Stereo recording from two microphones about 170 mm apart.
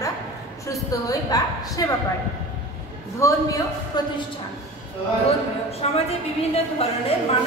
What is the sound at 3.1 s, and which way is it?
Speech, 20° left (ahead or behind).